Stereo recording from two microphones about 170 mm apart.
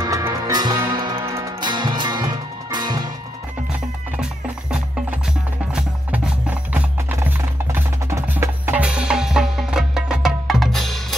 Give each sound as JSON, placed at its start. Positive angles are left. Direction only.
{"t": 0.0, "sound": "music", "side_deg": -20}
{"t": 5.2, "sound": "music", "side_deg": -5}